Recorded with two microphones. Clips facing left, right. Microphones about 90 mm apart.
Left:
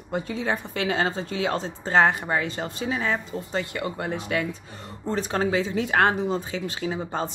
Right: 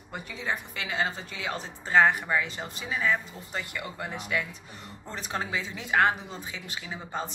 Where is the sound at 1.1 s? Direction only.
30° left (ahead or behind).